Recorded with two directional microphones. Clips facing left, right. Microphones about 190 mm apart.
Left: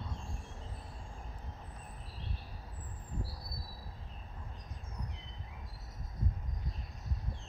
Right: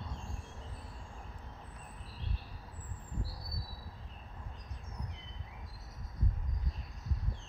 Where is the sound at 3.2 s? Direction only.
Centre (ahead or behind).